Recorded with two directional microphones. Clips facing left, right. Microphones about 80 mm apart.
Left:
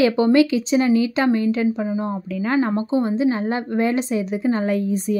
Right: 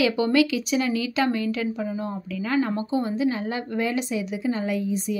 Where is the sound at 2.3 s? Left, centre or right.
Left.